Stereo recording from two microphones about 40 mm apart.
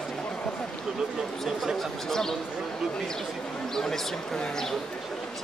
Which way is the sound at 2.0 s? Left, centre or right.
Centre.